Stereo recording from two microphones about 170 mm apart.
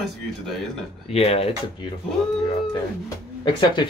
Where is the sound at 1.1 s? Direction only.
35° left (ahead or behind).